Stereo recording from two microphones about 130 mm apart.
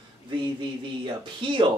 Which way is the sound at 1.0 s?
40° right (ahead or behind).